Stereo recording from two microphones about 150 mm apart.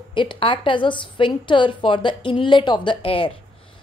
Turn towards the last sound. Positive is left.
turn(degrees=35)  # may be behind; listen again after turning